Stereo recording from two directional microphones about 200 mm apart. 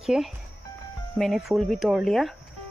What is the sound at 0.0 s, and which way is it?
Speech, 5° right (ahead or behind).